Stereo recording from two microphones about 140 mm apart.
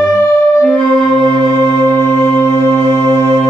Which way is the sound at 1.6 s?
20° left (ahead or behind).